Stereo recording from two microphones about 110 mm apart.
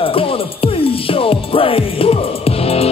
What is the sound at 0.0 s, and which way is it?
Music, 55° left (ahead or behind).